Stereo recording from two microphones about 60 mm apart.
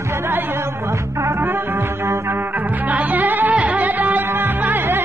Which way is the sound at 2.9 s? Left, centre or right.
Right.